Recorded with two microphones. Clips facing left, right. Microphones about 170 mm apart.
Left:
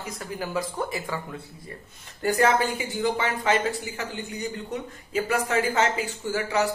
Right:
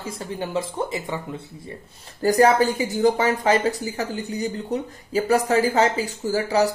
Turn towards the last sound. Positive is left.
turn(degrees=-35)  # may be behind; listen again after turning